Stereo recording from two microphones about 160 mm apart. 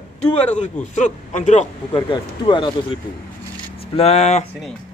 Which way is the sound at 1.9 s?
30° left (ahead or behind).